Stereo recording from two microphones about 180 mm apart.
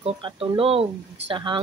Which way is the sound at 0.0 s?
30° right (ahead or behind).